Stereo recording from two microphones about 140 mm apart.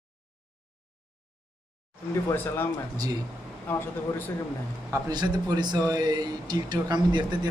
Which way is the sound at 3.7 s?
15° left (ahead or behind).